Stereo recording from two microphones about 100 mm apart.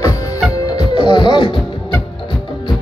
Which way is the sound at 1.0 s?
50° left (ahead or behind).